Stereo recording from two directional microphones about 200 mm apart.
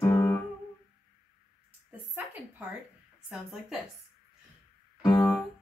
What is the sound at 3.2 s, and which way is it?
Speech, 5° right (ahead or behind).